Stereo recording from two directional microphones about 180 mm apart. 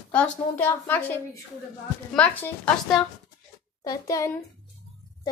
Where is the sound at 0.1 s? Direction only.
10° left (ahead or behind).